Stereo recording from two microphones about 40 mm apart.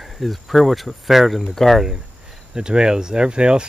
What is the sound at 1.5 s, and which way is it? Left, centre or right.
Speech, centre.